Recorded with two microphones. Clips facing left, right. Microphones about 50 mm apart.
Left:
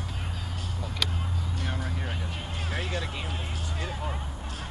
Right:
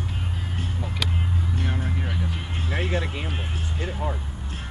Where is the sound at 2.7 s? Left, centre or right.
Right.